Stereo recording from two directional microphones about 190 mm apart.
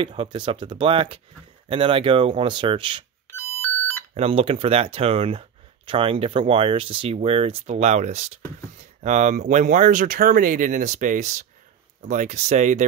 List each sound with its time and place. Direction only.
0.0 s speech: 30° right (ahead or behind)
3.3 s beep: 10° left (ahead or behind)
4.1 s speech: 30° right (ahead or behind)